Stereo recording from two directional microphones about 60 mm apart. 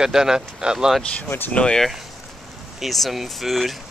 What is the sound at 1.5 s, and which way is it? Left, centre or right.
Speech, centre.